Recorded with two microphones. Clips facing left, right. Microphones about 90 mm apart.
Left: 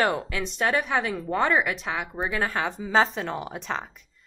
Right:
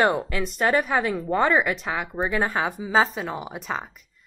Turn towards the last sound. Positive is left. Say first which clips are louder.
# right 1 dB
turn(degrees=-5)  # may be behind; listen again after turning